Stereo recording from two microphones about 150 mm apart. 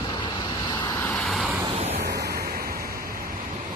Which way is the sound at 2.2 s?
90° right.